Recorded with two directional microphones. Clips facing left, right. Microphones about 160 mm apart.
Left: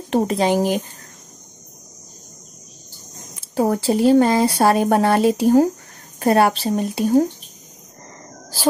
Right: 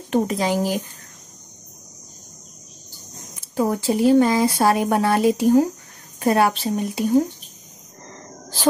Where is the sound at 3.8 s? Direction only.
30° left (ahead or behind).